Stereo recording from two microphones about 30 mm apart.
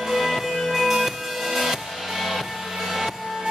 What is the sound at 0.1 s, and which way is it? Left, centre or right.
Music, centre.